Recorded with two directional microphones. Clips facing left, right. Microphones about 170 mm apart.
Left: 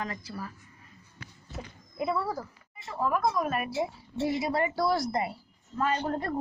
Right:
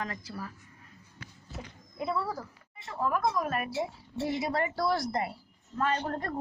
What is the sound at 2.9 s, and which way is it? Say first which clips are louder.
A woman's voice: left 1 dB; centre (ahead or behind).